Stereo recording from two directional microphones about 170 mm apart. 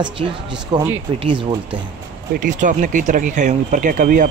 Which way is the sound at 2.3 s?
50° right (ahead or behind).